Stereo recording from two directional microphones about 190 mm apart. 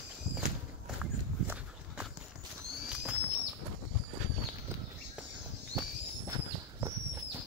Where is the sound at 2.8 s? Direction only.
5° right (ahead or behind).